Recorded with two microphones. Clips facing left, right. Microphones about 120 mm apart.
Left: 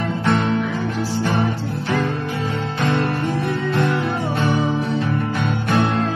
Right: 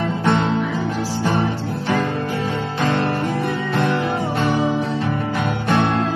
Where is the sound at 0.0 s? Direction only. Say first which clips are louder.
Right 1 dB; centre (ahead or behind).